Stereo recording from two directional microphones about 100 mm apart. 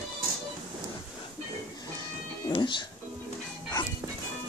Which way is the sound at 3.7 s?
50° left (ahead or behind).